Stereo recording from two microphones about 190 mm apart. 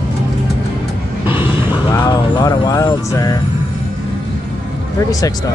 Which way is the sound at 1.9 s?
20° left (ahead or behind).